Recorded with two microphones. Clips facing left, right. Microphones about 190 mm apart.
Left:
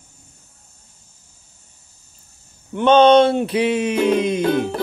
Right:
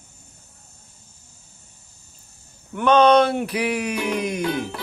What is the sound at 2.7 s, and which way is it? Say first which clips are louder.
Speech: left 4 dB; 25° left (ahead or behind).